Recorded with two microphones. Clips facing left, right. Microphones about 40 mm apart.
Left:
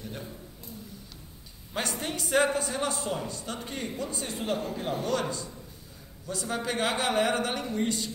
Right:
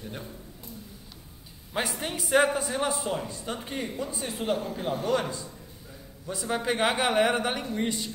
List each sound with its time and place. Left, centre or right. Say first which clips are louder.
1.7 s a man's voice: right 1 dB; centre
6.2 s a man's voice: right 3 dB; centre